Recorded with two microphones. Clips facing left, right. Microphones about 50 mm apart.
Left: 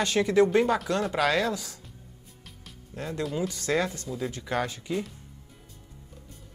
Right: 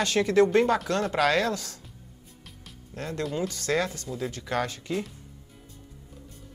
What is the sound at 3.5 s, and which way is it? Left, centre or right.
Speech, centre.